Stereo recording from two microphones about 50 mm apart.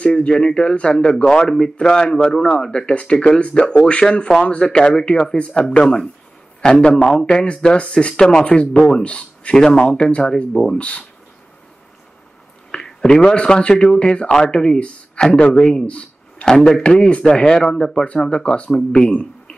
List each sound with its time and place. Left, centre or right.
0.0 s speech: left
12.7 s speech: centre
16.5 s a man's voice: centre
16.8 s speech: centre